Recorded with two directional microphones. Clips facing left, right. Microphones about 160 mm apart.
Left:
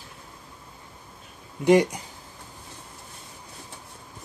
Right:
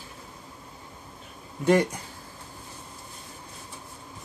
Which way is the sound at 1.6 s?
15° left (ahead or behind).